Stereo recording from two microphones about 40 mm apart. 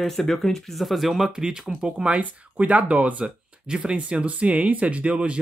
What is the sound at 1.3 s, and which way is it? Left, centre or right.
Speech, right.